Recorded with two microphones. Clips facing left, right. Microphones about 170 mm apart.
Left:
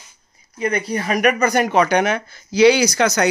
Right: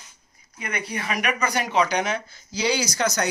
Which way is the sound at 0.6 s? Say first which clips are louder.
Left 9 dB; 35° left (ahead or behind).